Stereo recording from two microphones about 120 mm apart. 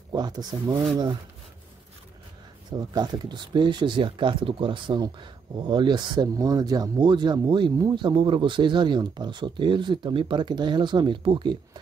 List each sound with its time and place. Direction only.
0.1 s speech: 35° right (ahead or behind)
2.9 s speech: 35° right (ahead or behind)